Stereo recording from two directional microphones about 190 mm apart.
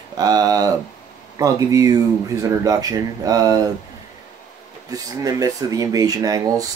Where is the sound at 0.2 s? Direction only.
20° right (ahead or behind).